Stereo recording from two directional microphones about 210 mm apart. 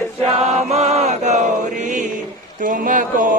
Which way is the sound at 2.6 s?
40° right (ahead or behind).